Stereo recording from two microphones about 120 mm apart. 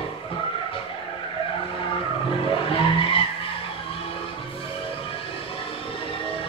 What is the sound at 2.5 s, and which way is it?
Skidding, 50° left (ahead or behind).